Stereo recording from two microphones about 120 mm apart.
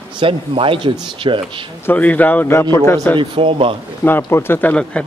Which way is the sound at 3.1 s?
45° right (ahead or behind).